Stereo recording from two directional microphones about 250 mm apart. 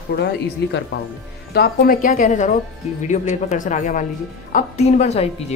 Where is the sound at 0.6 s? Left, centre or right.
Left.